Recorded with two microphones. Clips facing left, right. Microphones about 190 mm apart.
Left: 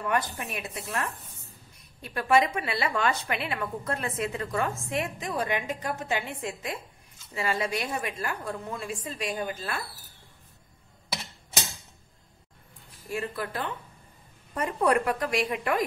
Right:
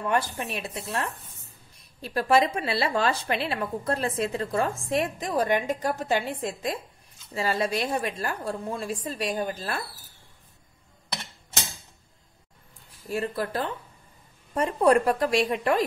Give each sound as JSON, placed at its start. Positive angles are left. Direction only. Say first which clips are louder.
{"t": 0.4, "sound": "a woman's voice", "louder": "right 3 dB", "side_deg": -30}
{"t": 13.1, "sound": "a woman's voice", "louder": "right 4 dB", "side_deg": -35}